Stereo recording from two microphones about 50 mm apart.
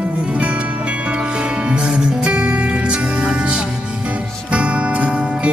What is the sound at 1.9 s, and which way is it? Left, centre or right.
Music, right.